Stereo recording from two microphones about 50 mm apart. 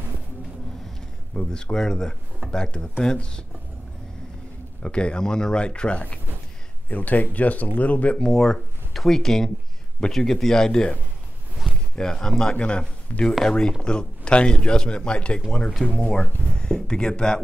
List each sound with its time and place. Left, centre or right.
1.3 s a man's voice: centre
4.8 s a man's voice: centre
6.9 s speech: left
8.3 s a man's voice: centre
12.5 s a man's voice: left